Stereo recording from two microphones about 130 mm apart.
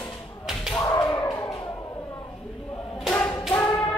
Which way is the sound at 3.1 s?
15° left (ahead or behind).